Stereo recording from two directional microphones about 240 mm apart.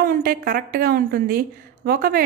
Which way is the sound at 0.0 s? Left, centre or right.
Right.